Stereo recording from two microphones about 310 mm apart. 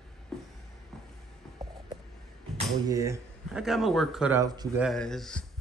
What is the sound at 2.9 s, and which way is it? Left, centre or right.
Speech, centre.